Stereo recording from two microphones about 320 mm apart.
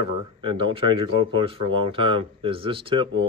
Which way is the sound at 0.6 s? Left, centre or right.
Centre.